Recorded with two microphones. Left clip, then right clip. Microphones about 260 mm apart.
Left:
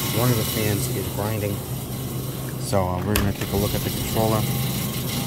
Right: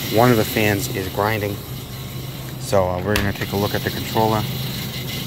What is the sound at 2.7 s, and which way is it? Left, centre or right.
Speech, centre.